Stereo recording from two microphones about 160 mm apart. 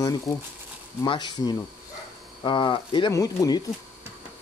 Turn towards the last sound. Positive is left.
turn(degrees=25)  # may be behind; listen again after turning